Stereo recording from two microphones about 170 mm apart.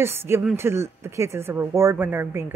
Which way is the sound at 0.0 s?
15° right (ahead or behind).